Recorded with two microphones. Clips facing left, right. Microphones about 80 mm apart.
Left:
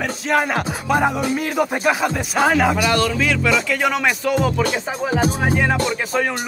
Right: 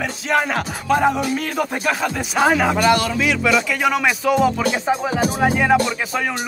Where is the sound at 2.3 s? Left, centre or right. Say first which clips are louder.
Even; centre.